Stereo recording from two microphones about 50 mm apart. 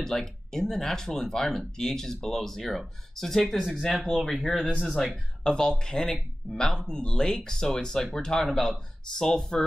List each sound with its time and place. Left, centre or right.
0.0 s speech: centre
5.4 s speech: centre